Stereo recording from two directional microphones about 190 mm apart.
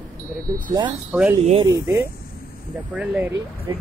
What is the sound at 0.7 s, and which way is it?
Speech, 20° right (ahead or behind).